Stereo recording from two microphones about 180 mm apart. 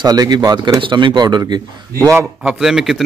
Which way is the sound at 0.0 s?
20° right (ahead or behind).